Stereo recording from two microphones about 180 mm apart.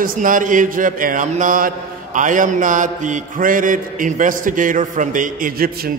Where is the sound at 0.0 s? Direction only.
50° right (ahead or behind).